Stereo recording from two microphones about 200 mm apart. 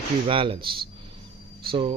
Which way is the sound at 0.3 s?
25° right (ahead or behind).